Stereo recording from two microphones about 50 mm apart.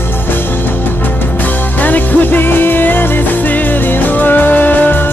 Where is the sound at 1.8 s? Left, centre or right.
Left.